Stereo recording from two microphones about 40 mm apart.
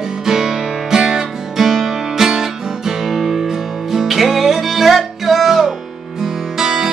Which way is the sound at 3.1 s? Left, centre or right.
Centre.